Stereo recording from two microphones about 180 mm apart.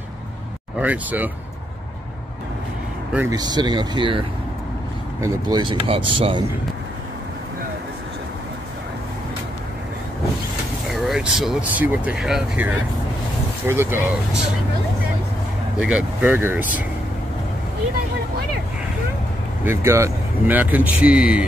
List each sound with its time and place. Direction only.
0.7 s speech: 10° right (ahead or behind)
3.3 s speech: 20° right (ahead or behind)
5.2 s speech: 25° right (ahead or behind)
10.9 s speech: centre (ahead or behind)
15.8 s speech: 5° right (ahead or behind)
19.6 s speech: 15° right (ahead or behind)